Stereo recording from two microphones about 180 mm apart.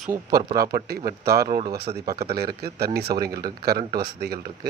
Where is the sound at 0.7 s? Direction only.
55° right (ahead or behind).